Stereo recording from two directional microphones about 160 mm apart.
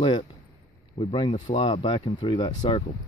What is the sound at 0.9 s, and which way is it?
Speech, 30° left (ahead or behind).